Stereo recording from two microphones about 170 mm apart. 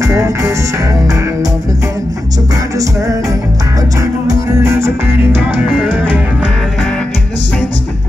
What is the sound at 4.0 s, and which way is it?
Music, 15° right (ahead or behind).